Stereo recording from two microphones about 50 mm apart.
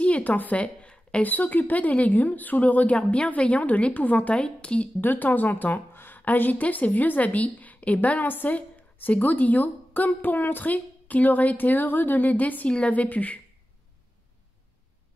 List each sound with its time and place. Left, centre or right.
0.0 s a woman's voice: left
4.4 s speech: left
5.0 s a woman's voice: left